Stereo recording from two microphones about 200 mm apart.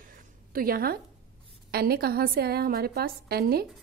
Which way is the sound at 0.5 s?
45° right (ahead or behind).